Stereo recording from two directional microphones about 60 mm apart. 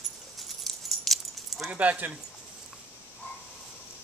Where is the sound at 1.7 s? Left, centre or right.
Right.